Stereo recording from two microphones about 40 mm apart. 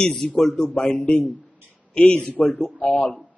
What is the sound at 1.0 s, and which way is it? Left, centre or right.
A man's voice, left.